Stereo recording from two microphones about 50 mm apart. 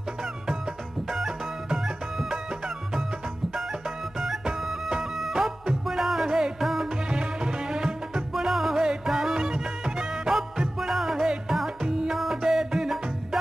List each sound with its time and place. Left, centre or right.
1.1 s music: centre
4.6 s music: centre
8.3 s music: centre